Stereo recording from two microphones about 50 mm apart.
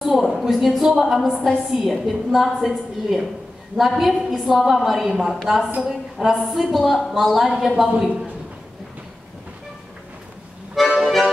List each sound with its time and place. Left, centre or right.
0.0 s a woman's voice: centre
3.7 s a woman's voice: centre
7.7 s a man's voice: centre
10.7 s music: centre